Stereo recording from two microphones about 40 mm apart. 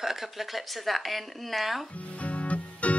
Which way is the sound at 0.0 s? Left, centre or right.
Centre.